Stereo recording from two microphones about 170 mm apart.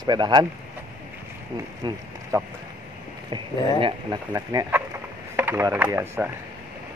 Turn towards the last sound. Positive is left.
turn(degrees=-10)  # may be behind; listen again after turning